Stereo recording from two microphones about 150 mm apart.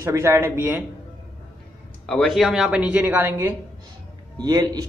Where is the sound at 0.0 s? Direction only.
20° right (ahead or behind).